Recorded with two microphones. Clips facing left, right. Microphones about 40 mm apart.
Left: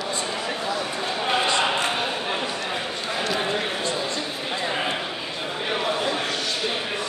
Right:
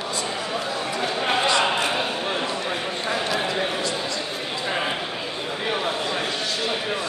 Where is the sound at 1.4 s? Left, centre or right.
Left.